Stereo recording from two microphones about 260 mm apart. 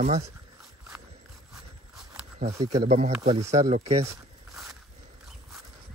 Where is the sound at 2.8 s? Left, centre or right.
Right.